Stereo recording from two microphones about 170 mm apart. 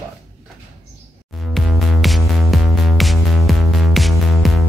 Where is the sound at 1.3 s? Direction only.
Centre (ahead or behind).